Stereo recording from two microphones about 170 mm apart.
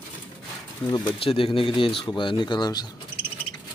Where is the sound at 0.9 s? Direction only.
30° left (ahead or behind).